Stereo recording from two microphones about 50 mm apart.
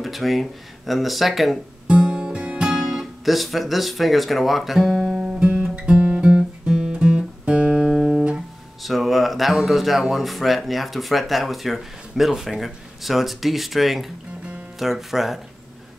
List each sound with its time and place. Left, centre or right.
0.0 s speech: centre
1.9 s music: right
3.3 s speech: centre
5.1 s music: centre
8.8 s speech: centre